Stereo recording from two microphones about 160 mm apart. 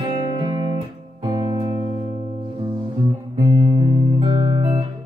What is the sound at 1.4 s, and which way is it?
Music, 30° right (ahead or behind).